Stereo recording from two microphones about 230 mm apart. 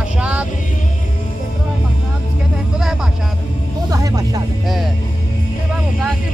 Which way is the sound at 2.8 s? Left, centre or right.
Centre.